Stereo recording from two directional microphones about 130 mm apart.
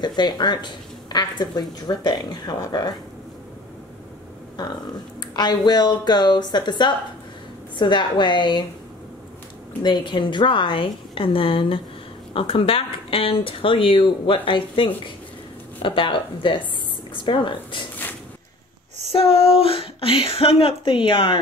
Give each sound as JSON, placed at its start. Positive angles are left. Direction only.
{"t": 0.0, "sound": "a woman's voice", "side_deg": 35}
{"t": 5.2, "sound": "a woman's voice", "side_deg": 35}
{"t": 9.8, "sound": "a woman's voice", "side_deg": 35}
{"t": 19.1, "sound": "speech", "side_deg": 50}